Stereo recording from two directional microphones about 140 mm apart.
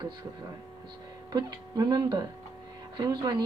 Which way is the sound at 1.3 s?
30° right (ahead or behind).